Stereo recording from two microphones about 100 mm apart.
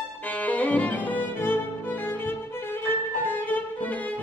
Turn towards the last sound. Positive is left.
turn(degrees=20)  # may be behind; listen again after turning